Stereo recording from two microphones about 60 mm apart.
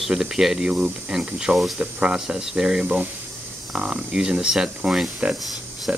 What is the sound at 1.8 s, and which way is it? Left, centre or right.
Speech, centre.